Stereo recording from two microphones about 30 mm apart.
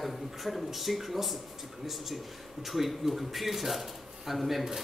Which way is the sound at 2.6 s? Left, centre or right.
Centre.